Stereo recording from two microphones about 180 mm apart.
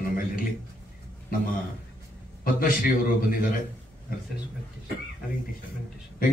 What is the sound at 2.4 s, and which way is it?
Speech, 50° left (ahead or behind).